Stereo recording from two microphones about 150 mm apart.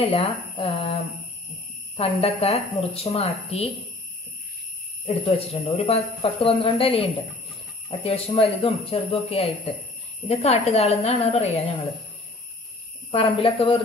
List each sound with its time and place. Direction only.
0.1 s speech: 35° left (ahead or behind)
2.0 s a woman's voice: 40° left (ahead or behind)
5.0 s a woman's voice: 40° left (ahead or behind)
13.1 s speech: 35° left (ahead or behind)